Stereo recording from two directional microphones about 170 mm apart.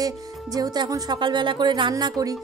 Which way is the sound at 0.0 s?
20° right (ahead or behind).